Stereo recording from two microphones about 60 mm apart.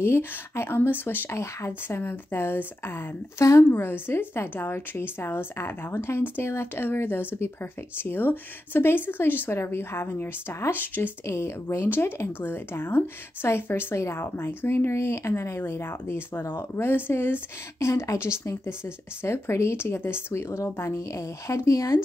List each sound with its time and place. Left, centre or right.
0.0 s a woman's voice: left
1.3 s speech: left
1.7 s a woman's voice: left
3.3 s speech: left
3.7 s a woman's voice: left
11.2 s a woman's voice: left
11.8 s a woman's voice: left
14.9 s speech: left
17.8 s a woman's voice: left